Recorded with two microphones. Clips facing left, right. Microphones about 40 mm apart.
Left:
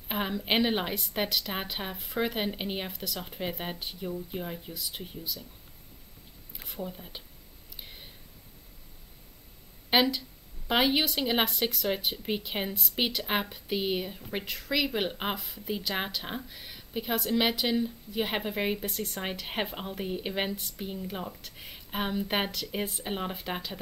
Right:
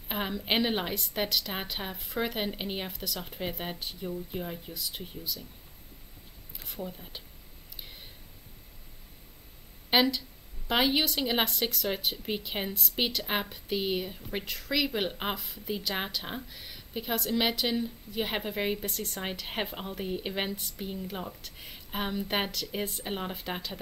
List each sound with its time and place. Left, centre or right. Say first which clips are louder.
0.1 s speech: left 1 dB; centre
6.6 s speech: left 1 dB; centre
7.7 s clicking: even; centre
9.8 s speech: even; centre